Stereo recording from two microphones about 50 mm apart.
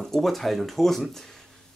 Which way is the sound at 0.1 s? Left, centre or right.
Centre.